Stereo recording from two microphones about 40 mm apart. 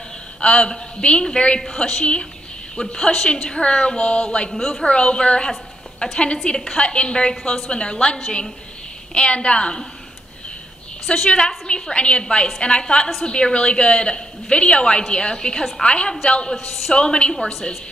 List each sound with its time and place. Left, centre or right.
0.4 s a woman's voice: left
4.5 s a woman's voice: centre
4.8 s a woman's voice: left
11.2 s a woman's voice: left
16.6 s a woman's voice: centre
16.9 s a woman's voice: left